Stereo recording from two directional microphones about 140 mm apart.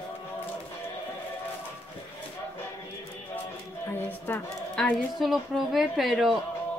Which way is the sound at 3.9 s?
15° left (ahead or behind).